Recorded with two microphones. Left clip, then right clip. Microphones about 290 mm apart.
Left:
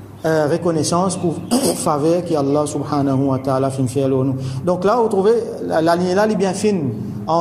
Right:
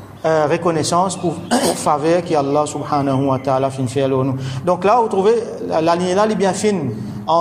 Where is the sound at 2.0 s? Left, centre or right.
Centre.